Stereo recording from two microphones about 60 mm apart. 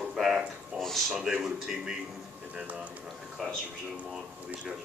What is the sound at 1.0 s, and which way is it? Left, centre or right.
Speech, centre.